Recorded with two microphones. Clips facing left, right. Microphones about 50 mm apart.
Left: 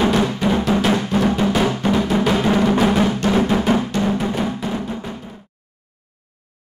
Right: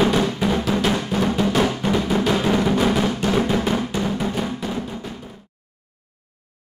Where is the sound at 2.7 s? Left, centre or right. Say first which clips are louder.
Left 3 dB; centre.